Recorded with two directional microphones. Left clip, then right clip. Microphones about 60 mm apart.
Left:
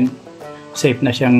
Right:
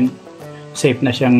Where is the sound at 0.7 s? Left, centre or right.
Left.